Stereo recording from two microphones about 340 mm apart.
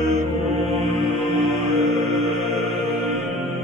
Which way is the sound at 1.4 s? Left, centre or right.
Right.